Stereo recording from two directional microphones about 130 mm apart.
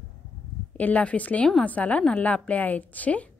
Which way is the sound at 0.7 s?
10° left (ahead or behind).